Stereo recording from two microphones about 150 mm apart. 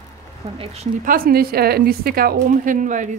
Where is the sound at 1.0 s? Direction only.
85° right.